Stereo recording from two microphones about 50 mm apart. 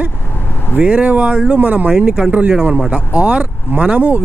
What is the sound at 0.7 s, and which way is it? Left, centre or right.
Speech, right.